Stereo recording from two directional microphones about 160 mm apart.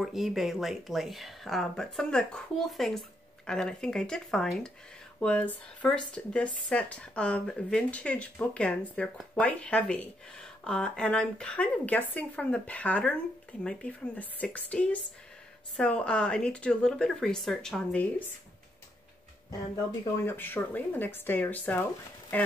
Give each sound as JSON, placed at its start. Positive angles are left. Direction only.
{"t": 0.0, "sound": "speech", "side_deg": 0}
{"t": 20.2, "sound": "speech", "side_deg": 10}